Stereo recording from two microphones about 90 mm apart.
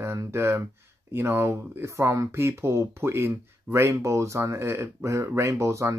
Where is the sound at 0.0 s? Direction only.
30° right (ahead or behind).